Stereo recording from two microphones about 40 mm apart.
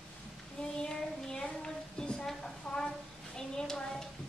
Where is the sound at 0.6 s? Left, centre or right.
Centre.